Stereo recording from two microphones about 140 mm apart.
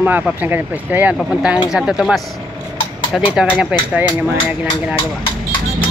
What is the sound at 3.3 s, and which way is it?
Speech, 5° right (ahead or behind).